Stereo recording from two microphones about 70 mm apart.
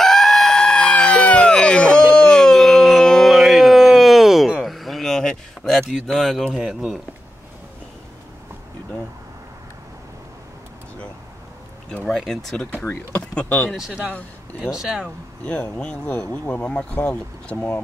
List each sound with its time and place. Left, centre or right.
0.0 s a sound: centre
5.9 s speech: centre
6.6 s speech: centre
12.0 s speech: centre
13.1 s speech: centre
13.7 s speech: centre
15.8 s speech: centre